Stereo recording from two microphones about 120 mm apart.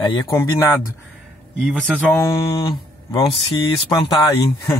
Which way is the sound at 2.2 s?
25° left (ahead or behind).